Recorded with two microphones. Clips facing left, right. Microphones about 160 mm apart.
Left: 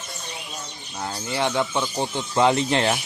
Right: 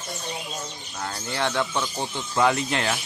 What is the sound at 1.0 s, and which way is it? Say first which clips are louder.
Speech: left 2 dB; 15° left (ahead or behind).